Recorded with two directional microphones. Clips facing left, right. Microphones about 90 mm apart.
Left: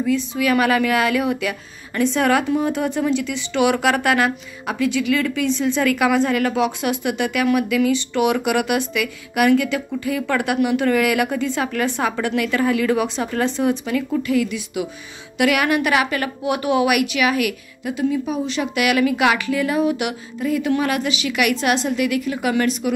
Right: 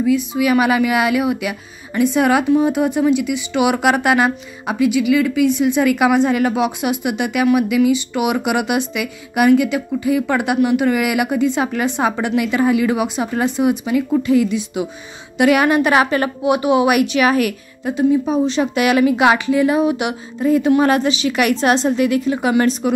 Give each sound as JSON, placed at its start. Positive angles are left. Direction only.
{"t": 0.0, "sound": "a woman's voice", "side_deg": -15}